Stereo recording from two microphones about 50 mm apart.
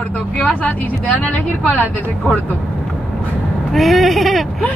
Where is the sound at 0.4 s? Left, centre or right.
Left.